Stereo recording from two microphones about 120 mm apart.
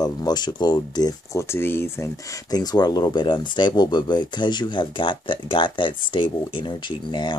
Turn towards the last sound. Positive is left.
turn(degrees=40)  # may be behind; listen again after turning